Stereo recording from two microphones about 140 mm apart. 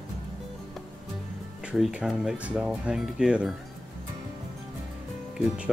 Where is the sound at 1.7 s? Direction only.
5° right (ahead or behind).